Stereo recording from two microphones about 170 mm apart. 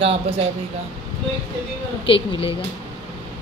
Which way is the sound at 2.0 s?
30° left (ahead or behind).